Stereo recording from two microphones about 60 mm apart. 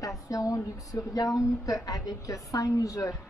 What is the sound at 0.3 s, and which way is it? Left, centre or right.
A woman's voice, left.